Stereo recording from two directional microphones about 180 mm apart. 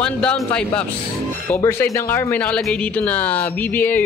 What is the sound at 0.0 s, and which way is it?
A man's voice, 5° left (ahead or behind).